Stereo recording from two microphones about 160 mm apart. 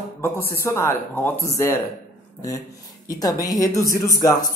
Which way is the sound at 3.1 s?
20° left (ahead or behind).